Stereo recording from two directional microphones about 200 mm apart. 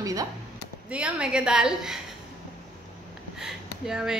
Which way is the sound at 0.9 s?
5° right (ahead or behind).